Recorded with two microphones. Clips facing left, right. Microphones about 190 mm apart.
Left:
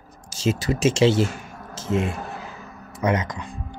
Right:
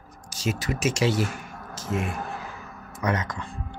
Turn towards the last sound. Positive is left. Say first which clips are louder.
# left 4 dB
turn(degrees=20)  # may be behind; listen again after turning